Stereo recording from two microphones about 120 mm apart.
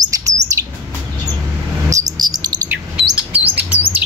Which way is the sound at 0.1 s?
30° right (ahead or behind).